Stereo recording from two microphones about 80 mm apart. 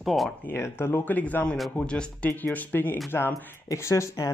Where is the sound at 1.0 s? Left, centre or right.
Left.